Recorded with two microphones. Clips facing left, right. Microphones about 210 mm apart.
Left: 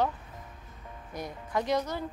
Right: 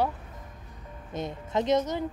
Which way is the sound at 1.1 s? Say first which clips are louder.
Right 3 dB; 25° right (ahead or behind).